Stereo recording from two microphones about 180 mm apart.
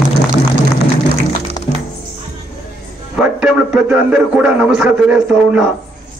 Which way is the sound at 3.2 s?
5° right (ahead or behind).